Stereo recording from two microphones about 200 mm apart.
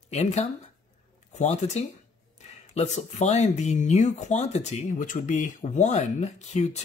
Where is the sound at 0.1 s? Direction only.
35° left (ahead or behind).